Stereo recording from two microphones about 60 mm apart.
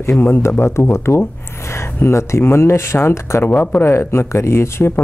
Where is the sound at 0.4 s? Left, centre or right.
Left.